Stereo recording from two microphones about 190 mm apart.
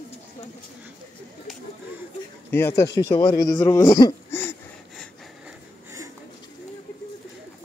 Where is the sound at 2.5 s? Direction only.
15° left (ahead or behind).